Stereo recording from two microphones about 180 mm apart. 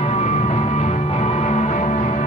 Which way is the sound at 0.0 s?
40° left (ahead or behind).